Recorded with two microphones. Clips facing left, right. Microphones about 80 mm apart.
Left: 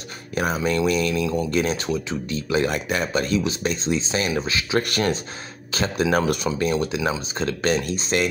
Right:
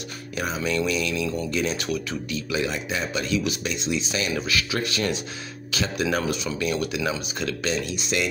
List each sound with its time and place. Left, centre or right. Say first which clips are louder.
0.3 s music: left 5 dB; left
0.7 s speech: left 3 dB; left
1.8 s speech: left 2 dB; left
2.7 s a man's voice: left 4 dB; left
3.1 s speech: left 1 dB; left
4.7 s speech: left 7 dB; left
5.7 s speech: left 3 dB; left
6.1 s speech: left 5 dB; left
6.7 s speech: left 3 dB; left
7.6 s speech: left 5 dB; left